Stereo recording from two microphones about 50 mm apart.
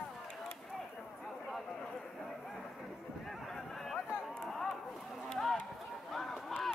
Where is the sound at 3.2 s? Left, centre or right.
Centre.